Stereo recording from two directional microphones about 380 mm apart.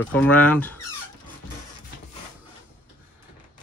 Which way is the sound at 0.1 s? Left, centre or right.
Centre.